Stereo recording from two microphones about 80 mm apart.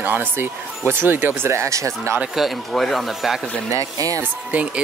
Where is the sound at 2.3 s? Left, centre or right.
Centre.